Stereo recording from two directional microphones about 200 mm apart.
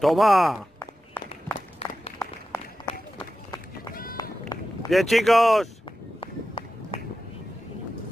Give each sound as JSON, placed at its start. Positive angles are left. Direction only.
{"t": 0.0, "sound": "speech", "side_deg": 0}
{"t": 0.7, "sound": "run", "side_deg": 10}
{"t": 1.8, "sound": "applause", "side_deg": 30}
{"t": 3.9, "sound": "run", "side_deg": 45}
{"t": 4.8, "sound": "speech", "side_deg": 0}
{"t": 6.2, "sound": "run", "side_deg": 30}